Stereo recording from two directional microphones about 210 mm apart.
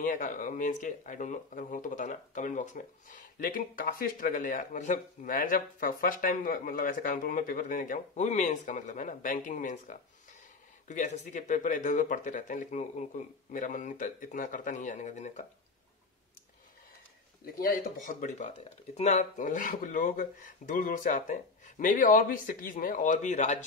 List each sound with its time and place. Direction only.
0.0 s speech: 40° left (ahead or behind)
17.6 s speech: 40° left (ahead or behind)